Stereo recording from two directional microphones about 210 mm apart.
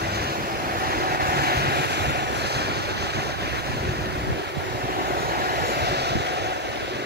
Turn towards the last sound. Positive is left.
turn(degrees=-55)  # may be behind; listen again after turning